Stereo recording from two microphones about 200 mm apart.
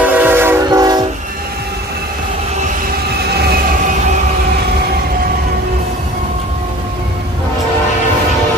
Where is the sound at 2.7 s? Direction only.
55° right (ahead or behind).